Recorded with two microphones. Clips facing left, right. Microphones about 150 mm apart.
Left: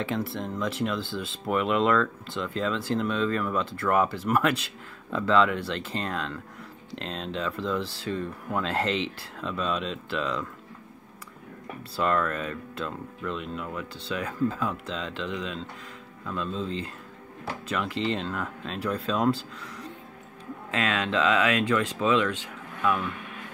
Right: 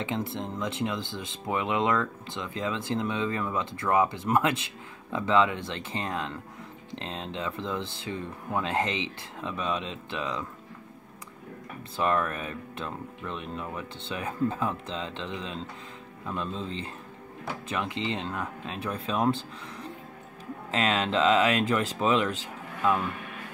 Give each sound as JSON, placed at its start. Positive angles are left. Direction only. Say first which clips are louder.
{"t": 0.0, "sound": "speech", "louder": "left 2 dB", "side_deg": -20}
{"t": 12.0, "sound": "speech", "louder": "left 1 dB", "side_deg": -15}